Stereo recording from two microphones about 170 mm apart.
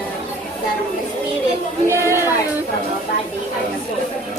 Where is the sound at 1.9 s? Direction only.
15° right (ahead or behind).